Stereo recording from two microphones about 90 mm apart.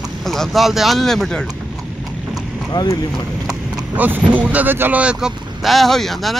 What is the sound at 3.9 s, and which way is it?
Speech, 20° right (ahead or behind).